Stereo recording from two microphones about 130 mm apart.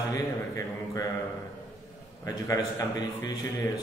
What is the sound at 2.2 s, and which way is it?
A man's voice, 30° left (ahead or behind).